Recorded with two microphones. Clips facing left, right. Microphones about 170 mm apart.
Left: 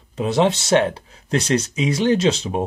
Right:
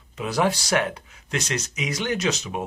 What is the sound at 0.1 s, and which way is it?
Speech, 30° left (ahead or behind).